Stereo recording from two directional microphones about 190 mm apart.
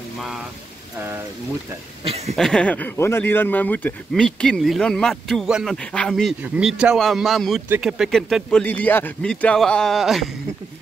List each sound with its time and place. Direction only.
2.0 s speech: 35° right (ahead or behind)
2.3 s speech: 5° left (ahead or behind)